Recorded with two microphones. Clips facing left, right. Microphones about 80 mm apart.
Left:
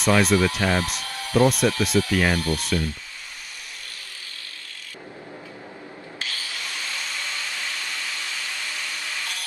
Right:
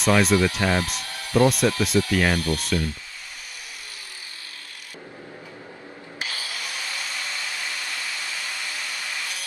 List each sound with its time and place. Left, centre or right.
0.0 s speech: centre
6.1 s wood: centre